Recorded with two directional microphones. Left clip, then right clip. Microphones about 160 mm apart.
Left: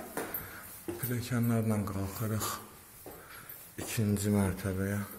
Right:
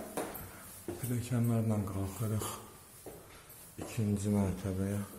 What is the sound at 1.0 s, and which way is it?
Speech, 5° right (ahead or behind).